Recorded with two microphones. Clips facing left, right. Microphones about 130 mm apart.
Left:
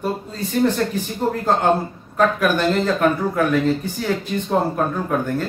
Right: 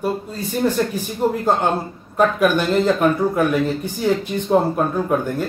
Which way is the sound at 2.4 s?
15° right (ahead or behind).